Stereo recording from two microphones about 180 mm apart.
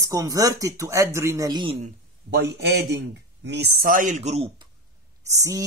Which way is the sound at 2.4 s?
65° right (ahead or behind).